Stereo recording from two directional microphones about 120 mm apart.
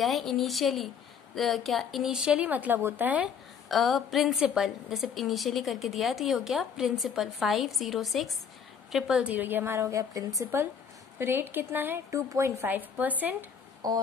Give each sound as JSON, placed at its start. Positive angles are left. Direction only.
{"t": 0.0, "sound": "a woman's voice", "side_deg": 0}
{"t": 3.6, "sound": "a woman's voice", "side_deg": 0}
{"t": 9.3, "sound": "a woman's voice", "side_deg": -15}
{"t": 13.8, "sound": "a sound", "side_deg": -35}